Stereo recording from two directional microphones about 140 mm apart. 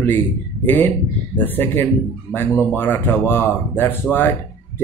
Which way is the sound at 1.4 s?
15° left (ahead or behind).